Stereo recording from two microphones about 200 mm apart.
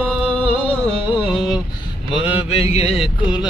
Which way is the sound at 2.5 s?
30° left (ahead or behind).